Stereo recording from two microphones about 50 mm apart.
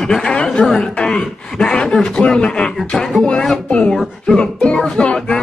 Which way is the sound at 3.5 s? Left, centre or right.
Left.